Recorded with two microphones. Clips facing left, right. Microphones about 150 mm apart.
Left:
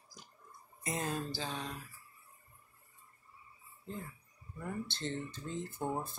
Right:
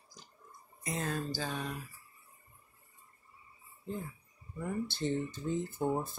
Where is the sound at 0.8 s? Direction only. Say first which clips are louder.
Right 1 dB; 20° left (ahead or behind).